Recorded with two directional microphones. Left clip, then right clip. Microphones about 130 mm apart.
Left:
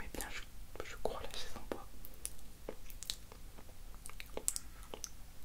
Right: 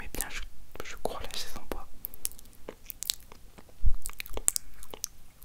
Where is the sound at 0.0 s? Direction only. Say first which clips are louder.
Right 6 dB; 25° right (ahead or behind).